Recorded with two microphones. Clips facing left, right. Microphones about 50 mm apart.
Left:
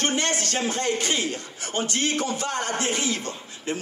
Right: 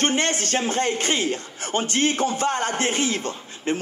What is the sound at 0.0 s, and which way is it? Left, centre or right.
Speech, right.